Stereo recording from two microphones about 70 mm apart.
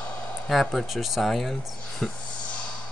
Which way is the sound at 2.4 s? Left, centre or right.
Centre.